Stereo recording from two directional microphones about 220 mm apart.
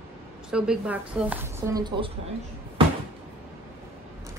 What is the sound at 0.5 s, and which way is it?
A woman's voice, 5° right (ahead or behind).